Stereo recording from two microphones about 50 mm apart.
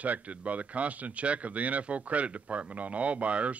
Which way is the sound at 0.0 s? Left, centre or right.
Right.